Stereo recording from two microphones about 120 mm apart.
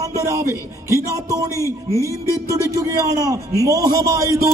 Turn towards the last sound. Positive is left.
turn(degrees=-30)  # may be behind; listen again after turning